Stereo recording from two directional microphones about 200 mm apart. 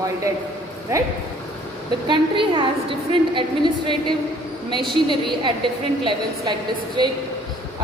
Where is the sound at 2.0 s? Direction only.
25° right (ahead or behind).